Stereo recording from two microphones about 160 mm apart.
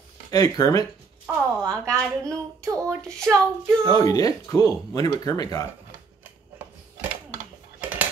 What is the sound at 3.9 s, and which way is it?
Speech, 20° left (ahead or behind).